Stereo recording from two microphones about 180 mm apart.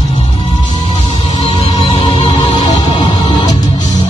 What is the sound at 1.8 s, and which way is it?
Music, 30° left (ahead or behind).